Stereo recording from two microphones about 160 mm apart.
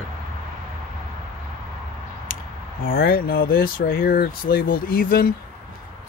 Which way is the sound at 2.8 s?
65° left (ahead or behind).